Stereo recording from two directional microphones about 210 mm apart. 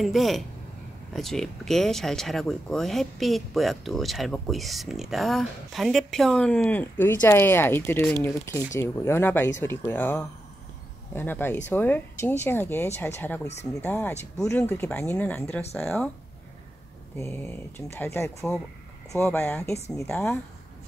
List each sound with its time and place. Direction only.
0.0 s speech: centre (ahead or behind)
13.5 s speech: 30° left (ahead or behind)
13.8 s speech: 10° left (ahead or behind)
17.2 s speech: 10° left (ahead or behind)